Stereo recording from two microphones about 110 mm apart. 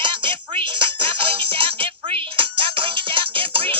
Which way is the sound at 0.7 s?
55° right (ahead or behind).